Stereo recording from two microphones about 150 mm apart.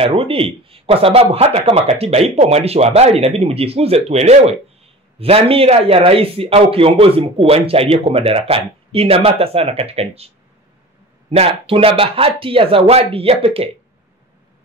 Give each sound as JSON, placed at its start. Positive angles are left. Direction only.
{"t": 0.0, "sound": "a man's voice", "side_deg": -40}